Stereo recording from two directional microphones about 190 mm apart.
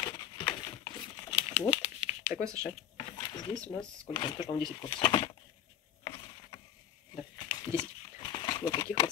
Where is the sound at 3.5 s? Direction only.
5° left (ahead or behind).